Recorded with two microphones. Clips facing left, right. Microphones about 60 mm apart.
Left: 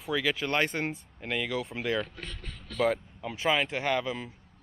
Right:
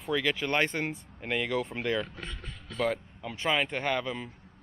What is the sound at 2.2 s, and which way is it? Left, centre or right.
Speech, right.